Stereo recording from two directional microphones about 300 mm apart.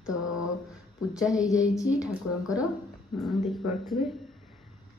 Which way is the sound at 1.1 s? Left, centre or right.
Centre.